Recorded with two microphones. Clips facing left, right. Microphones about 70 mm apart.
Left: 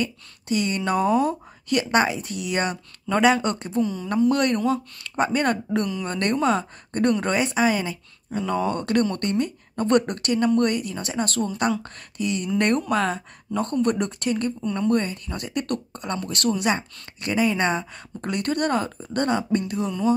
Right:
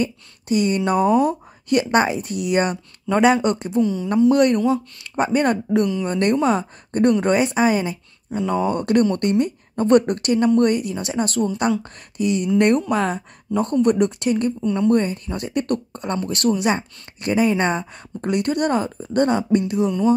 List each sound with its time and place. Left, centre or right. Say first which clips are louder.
0.0 s speech: right 4 dB; right
3.8 s speech: right 5 dB; centre
4.3 s speech: right 6 dB; centre
8.3 s speech: right 3 dB; centre
14.6 s speech: right 5 dB; centre
14.9 s speech: right 3 dB; right